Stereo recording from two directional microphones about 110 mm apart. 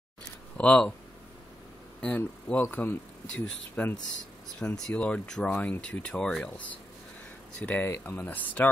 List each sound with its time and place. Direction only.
0.6 s speech: 10° left (ahead or behind)
2.0 s speech: 10° left (ahead or behind)
3.3 s speech: 10° left (ahead or behind)